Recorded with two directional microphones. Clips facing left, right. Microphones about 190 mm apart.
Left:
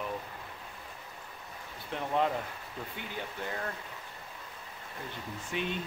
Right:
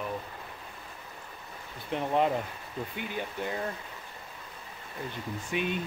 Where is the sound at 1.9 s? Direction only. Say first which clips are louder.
Right 3 dB; 20° right (ahead or behind).